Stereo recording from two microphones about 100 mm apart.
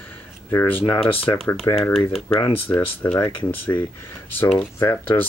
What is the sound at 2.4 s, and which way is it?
Speech, 25° left (ahead or behind).